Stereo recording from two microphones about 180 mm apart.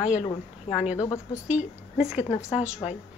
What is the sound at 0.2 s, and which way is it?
Speech, 35° left (ahead or behind).